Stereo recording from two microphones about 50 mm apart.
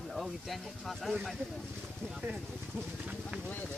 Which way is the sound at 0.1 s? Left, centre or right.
Centre.